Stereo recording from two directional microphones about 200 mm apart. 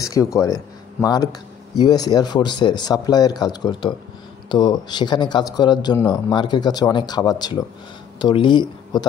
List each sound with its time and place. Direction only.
0.0 s speech: 15° left (ahead or behind)